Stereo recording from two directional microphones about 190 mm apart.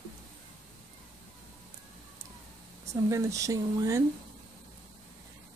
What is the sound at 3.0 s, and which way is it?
Speech, 15° right (ahead or behind).